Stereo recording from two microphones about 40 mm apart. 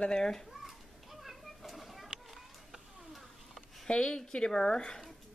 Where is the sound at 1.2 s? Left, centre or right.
Centre.